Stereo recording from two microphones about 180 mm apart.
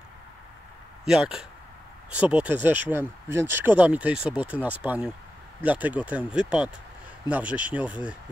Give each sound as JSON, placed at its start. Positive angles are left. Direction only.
{"t": 1.0, "sound": "speech", "side_deg": -5}